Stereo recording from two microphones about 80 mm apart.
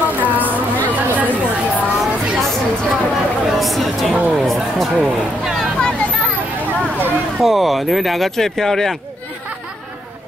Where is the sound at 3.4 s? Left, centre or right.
Centre.